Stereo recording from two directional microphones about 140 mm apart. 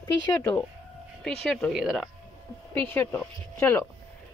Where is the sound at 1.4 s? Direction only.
5° left (ahead or behind).